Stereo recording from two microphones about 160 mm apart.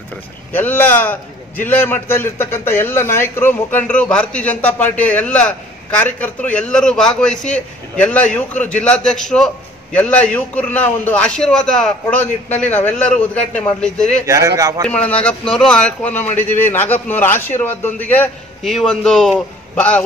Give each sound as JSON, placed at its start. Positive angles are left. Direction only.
{"t": 0.5, "sound": "a man's voice", "side_deg": 10}
{"t": 14.2, "sound": "speech", "side_deg": -20}
{"t": 14.9, "sound": "a man's voice", "side_deg": 10}